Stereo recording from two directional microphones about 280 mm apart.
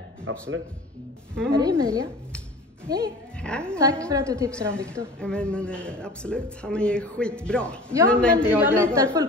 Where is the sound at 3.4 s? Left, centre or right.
Centre.